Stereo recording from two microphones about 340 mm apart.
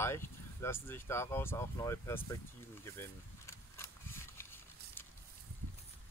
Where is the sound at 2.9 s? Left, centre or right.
Centre.